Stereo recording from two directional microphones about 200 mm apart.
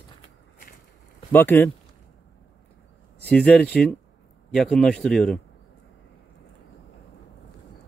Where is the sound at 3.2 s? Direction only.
5° left (ahead or behind).